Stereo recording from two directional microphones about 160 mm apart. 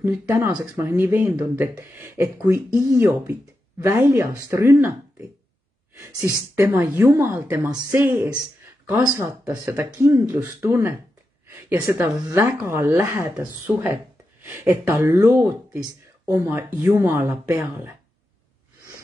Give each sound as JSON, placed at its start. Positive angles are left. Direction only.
{"t": 0.0, "sound": "speech", "side_deg": -15}
{"t": 6.5, "sound": "speech", "side_deg": -15}